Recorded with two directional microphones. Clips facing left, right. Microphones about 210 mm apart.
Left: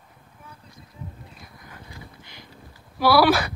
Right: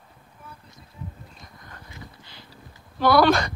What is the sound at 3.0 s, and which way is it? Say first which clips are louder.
Speech: even; 5° left (ahead or behind).